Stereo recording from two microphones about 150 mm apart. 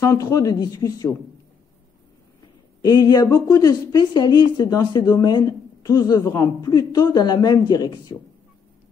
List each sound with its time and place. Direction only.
0.0 s a woman's voice: 25° left (ahead or behind)
2.8 s a woman's voice: 25° left (ahead or behind)